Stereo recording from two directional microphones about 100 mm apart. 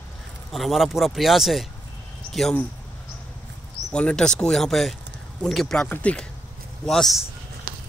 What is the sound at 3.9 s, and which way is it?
Speech, 10° left (ahead or behind).